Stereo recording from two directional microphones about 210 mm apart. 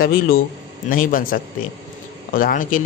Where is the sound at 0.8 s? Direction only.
40° left (ahead or behind).